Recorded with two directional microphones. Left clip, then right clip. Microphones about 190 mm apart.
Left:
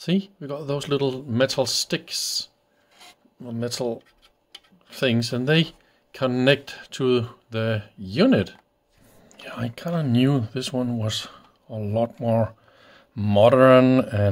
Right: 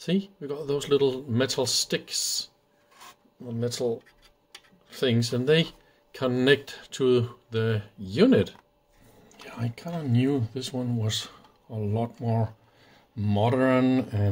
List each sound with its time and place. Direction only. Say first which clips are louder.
0.0 s speech: left 2 dB; 35° left (ahead or behind)
3.0 s filing: left 2 dB; 35° left (ahead or behind)
4.8 s speech: left 3 dB; 40° left (ahead or behind)
10.5 s speech: left 5 dB; 35° left (ahead or behind)